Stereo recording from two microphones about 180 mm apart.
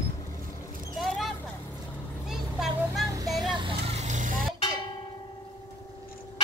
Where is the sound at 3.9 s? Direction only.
40° right (ahead or behind).